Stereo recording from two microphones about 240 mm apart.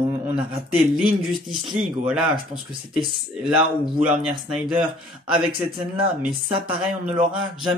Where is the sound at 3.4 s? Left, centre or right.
Centre.